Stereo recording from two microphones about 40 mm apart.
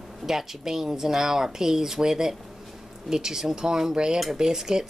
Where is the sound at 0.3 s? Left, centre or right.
Centre.